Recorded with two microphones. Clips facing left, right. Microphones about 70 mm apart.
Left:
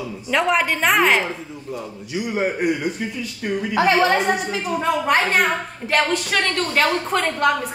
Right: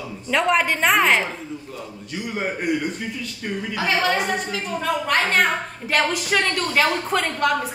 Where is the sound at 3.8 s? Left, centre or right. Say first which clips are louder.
Left 5 dB; left.